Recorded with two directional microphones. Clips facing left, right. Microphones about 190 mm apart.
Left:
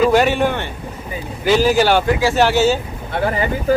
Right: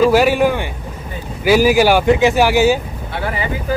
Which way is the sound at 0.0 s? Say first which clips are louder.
Right 2 dB; 5° right (ahead or behind).